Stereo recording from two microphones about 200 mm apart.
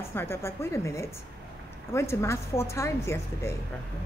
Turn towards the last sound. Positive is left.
turn(degrees=15)  # may be behind; listen again after turning